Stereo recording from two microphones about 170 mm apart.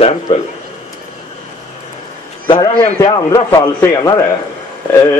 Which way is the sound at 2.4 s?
30° left (ahead or behind).